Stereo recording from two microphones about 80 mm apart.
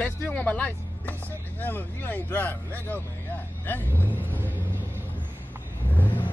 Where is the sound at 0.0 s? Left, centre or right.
Centre.